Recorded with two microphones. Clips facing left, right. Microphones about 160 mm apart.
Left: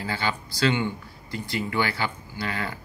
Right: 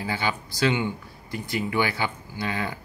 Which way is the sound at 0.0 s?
15° right (ahead or behind).